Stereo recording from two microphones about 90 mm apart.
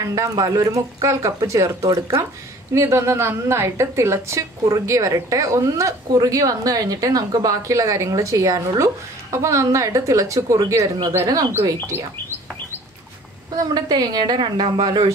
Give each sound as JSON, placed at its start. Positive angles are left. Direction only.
{"t": 0.1, "sound": "a woman's voice", "side_deg": -40}
{"t": 1.0, "sound": "a woman's voice", "side_deg": -35}
{"t": 11.9, "sound": "speech", "side_deg": -25}
{"t": 13.6, "sound": "a woman's voice", "side_deg": -50}